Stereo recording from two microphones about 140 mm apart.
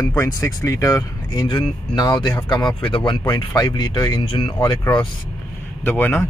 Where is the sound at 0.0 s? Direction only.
25° left (ahead or behind).